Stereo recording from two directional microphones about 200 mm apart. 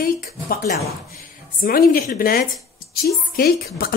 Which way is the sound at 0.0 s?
45° left (ahead or behind).